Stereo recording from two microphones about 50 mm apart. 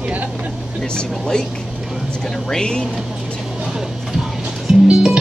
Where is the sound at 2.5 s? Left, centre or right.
Centre.